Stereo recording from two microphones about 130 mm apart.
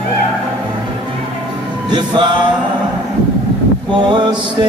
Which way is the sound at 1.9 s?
35° right (ahead or behind).